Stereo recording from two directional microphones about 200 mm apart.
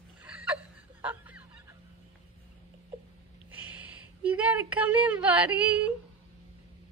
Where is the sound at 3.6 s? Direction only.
5° right (ahead or behind).